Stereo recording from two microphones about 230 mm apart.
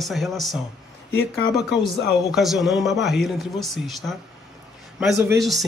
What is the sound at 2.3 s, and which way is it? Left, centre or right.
A man's voice, centre.